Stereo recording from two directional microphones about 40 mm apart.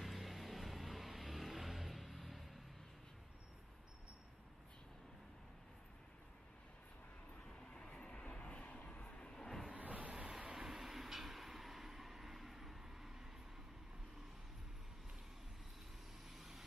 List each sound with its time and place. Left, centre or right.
0.0 s a sound: centre
7.4 s vehicle: centre
9.4 s vehicle: centre
9.7 s a sound: right
10.4 s train: centre
16.3 s vehicle: centre